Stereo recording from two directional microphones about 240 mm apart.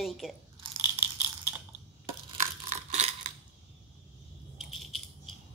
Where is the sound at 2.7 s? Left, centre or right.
Right.